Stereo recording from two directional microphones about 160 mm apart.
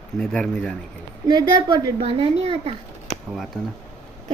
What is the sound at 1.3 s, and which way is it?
A woman's voice, 25° right (ahead or behind).